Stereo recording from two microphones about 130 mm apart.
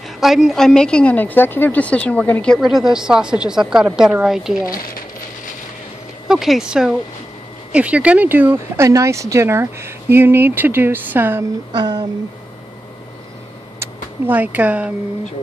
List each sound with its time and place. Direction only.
0.2 s a woman's voice: centre (ahead or behind)
6.2 s a woman's voice: 5° right (ahead or behind)
11.7 s speech: 30° right (ahead or behind)
14.2 s speech: 15° right (ahead or behind)